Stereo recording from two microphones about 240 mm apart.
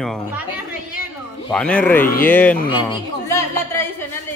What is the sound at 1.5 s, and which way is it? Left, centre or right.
Speech, centre.